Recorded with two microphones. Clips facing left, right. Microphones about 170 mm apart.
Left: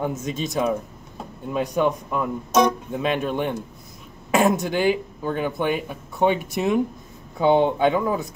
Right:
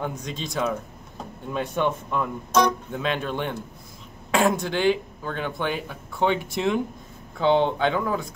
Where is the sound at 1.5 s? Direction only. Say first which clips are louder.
Left 3 dB; 5° left (ahead or behind).